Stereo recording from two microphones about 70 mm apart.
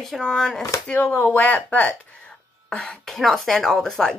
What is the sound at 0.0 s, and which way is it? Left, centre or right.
Speech, centre.